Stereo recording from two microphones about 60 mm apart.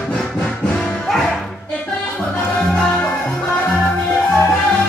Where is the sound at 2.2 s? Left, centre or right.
Centre.